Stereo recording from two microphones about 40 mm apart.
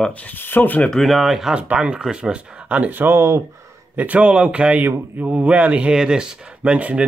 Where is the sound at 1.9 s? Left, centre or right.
Right.